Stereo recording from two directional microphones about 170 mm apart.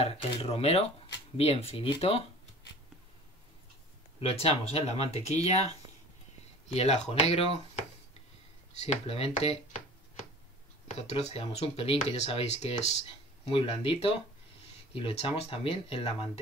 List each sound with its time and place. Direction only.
0.0 s speech: 35° left (ahead or behind)
4.2 s speech: 35° left (ahead or behind)
6.7 s speech: 35° left (ahead or behind)
8.8 s speech: 40° left (ahead or behind)